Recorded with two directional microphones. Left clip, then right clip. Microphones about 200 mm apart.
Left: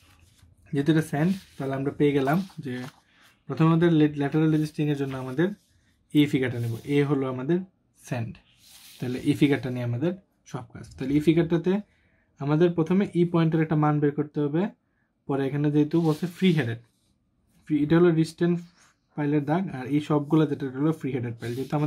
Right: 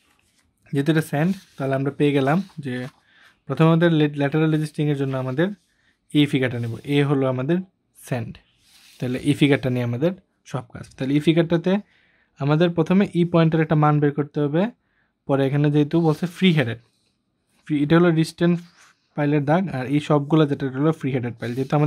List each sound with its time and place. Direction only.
0.7 s speech: 45° right (ahead or behind)